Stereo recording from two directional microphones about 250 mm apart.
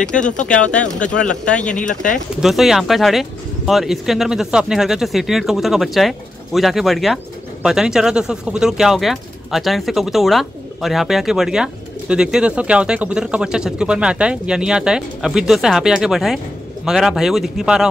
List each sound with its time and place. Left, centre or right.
0.0 s speech: centre
1.8 s speech: left
2.4 s speech: centre